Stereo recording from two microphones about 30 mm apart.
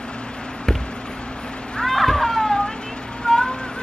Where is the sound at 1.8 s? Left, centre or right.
Centre.